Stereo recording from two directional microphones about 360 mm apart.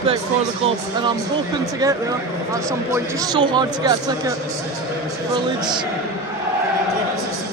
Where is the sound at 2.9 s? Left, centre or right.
Centre.